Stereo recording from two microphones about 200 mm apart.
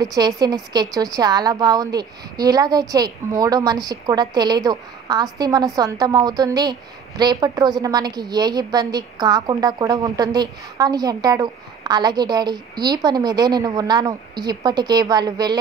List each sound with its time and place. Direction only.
0.0 s a woman's voice: 20° right (ahead or behind)